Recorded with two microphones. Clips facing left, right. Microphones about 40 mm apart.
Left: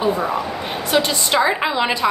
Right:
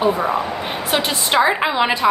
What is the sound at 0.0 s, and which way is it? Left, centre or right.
A woman's voice, centre.